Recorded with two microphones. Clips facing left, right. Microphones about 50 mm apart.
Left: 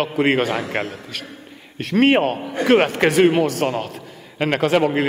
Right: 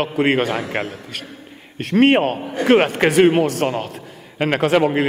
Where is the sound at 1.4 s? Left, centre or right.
Centre.